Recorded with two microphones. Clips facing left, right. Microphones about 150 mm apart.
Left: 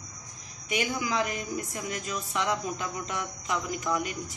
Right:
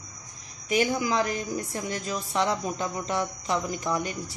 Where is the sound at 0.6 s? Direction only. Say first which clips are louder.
Right 5 dB; 35° right (ahead or behind).